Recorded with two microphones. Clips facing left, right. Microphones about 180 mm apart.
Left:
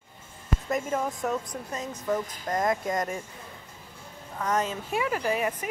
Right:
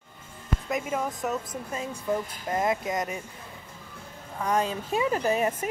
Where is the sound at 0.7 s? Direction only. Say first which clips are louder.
Left 1 dB; 5° right (ahead or behind).